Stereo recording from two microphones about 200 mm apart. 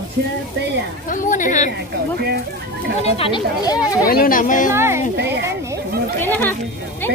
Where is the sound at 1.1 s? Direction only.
40° left (ahead or behind).